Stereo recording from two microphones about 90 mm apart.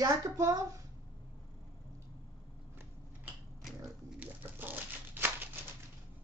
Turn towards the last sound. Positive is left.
turn(degrees=-20)  # may be behind; listen again after turning